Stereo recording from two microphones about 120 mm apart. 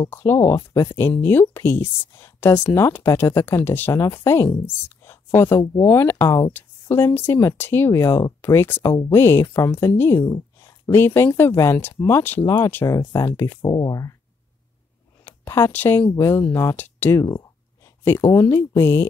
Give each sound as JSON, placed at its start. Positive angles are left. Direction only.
{"t": 0.0, "sound": "speech", "side_deg": 20}
{"t": 13.6, "sound": "speech", "side_deg": 35}
{"t": 15.2, "sound": "speech", "side_deg": 20}